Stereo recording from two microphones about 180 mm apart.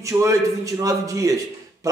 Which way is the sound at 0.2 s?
20° right (ahead or behind).